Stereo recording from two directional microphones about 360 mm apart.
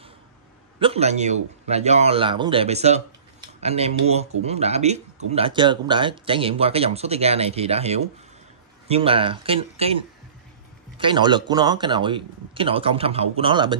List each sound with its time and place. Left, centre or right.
0.7 s speech: centre